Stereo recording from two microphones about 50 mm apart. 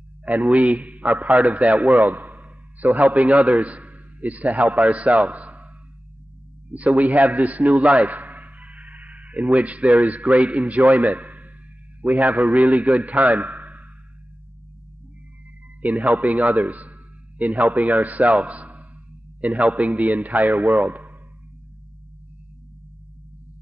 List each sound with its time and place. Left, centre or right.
0.2 s a man's voice: right
7.0 s a man's voice: right
7.8 s a man's voice: centre
8.1 s a sound: right
10.2 s a man's voice: right
15.8 s a man's voice: right